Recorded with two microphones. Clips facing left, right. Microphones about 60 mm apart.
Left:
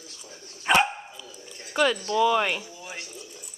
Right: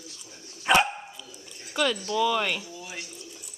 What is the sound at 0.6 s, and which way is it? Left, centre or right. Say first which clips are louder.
Speech: even; centre.